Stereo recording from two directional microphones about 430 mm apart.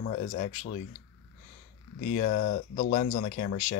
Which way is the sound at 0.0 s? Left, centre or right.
Centre.